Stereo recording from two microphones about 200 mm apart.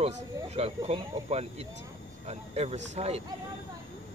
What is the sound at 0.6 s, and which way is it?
Speech, 30° right (ahead or behind).